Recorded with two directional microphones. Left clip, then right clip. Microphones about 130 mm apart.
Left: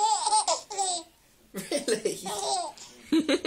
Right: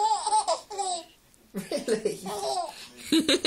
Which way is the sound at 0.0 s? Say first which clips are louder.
Even; 25° left (ahead or behind).